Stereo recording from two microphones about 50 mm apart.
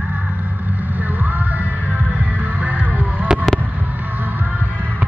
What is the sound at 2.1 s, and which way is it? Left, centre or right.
Music, right.